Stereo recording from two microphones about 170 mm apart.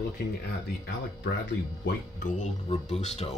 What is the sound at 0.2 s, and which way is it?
Speech, 80° left.